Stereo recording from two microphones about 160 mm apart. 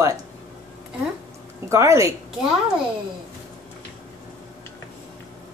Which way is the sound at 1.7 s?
20° right (ahead or behind).